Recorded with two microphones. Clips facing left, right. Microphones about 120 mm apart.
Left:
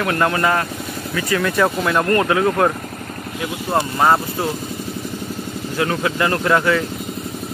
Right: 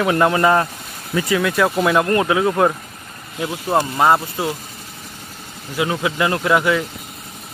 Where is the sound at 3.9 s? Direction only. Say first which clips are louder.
Left 2 dB; 10° right (ahead or behind).